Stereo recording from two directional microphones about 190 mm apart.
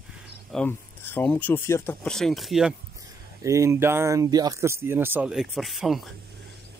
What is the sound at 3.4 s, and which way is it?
Speech, 15° right (ahead or behind).